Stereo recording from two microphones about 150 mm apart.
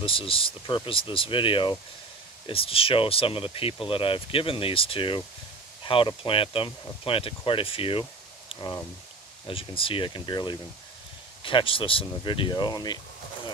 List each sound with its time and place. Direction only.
0.0 s speech: 35° left (ahead or behind)